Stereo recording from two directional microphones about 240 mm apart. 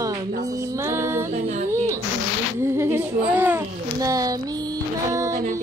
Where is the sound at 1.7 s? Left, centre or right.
Centre.